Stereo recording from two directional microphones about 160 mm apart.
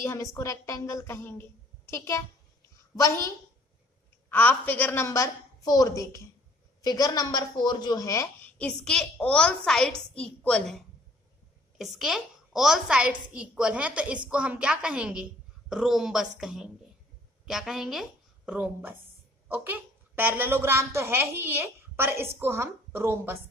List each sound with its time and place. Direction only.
0.0 s a woman's voice: 15° left (ahead or behind)
4.3 s a woman's voice: 10° left (ahead or behind)
8.5 s a woman's voice: 5° left (ahead or behind)
11.8 s a woman's voice: centre (ahead or behind)